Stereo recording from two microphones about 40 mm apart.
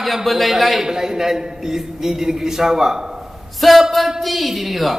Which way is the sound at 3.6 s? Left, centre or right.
Centre.